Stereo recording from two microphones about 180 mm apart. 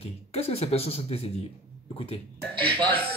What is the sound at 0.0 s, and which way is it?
Speech, 35° left (ahead or behind).